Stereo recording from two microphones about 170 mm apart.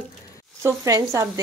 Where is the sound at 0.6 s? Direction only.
20° right (ahead or behind).